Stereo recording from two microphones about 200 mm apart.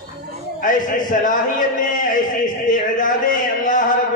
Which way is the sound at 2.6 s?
40° left (ahead or behind).